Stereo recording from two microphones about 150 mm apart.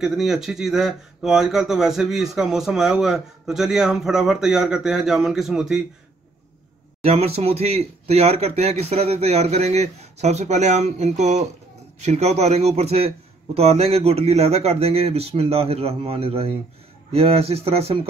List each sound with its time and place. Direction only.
0.0 s speech: centre (ahead or behind)
7.0 s a man's voice: 45° right (ahead or behind)